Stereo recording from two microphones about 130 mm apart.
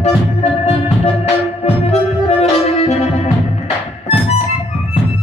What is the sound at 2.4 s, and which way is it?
Music, 55° left (ahead or behind).